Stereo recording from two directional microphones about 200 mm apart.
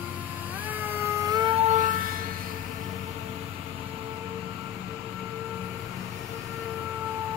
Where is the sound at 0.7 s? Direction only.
10° right (ahead or behind).